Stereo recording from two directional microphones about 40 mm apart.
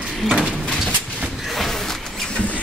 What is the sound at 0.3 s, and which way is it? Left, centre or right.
Sliding door, right.